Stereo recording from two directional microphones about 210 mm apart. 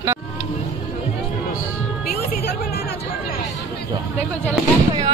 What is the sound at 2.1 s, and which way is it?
Music, 50° left (ahead or behind).